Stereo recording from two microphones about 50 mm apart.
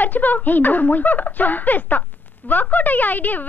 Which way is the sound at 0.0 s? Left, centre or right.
Left.